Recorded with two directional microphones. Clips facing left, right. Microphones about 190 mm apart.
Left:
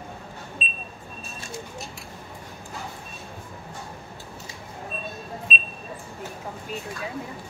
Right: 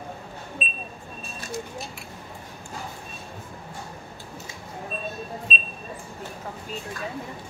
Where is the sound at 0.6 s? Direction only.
25° left (ahead or behind).